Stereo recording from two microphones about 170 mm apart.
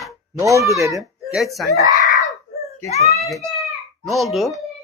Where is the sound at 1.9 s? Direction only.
50° left (ahead or behind).